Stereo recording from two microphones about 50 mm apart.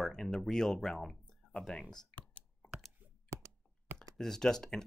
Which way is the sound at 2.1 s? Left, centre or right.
Left.